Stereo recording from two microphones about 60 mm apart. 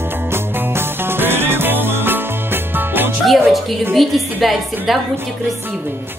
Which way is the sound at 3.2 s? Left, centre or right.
Centre.